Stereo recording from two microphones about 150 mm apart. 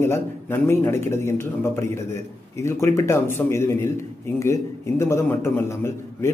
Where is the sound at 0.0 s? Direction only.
15° left (ahead or behind).